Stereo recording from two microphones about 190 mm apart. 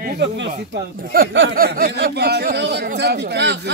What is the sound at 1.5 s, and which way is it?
Speech, 50° right (ahead or behind).